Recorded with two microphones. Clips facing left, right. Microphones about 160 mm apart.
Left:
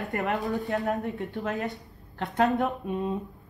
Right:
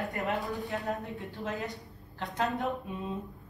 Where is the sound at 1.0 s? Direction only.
70° left (ahead or behind).